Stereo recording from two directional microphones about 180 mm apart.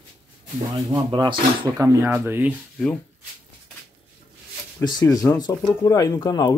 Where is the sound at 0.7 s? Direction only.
25° right (ahead or behind).